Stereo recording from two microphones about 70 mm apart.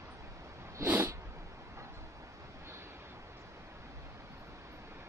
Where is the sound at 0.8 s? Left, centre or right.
Right.